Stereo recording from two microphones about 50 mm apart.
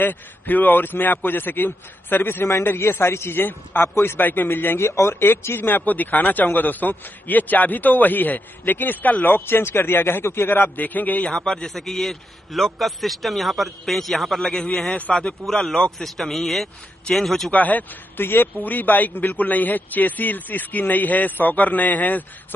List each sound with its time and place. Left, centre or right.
0.0 s speech: left
2.4 s a man's voice: left
4.7 s a man's voice: left
11.3 s a man's voice: centre
17.5 s speech: left
18.1 s speech: left